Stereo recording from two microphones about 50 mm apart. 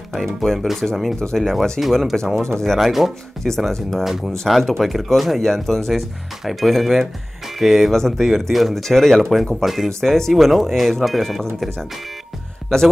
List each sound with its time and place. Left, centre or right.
0.1 s speech: centre
3.4 s speech: centre
4.0 s speech: centre